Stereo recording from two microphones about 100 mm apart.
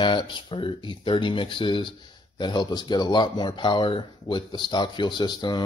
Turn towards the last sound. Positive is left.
turn(degrees=50)  # may be behind; listen again after turning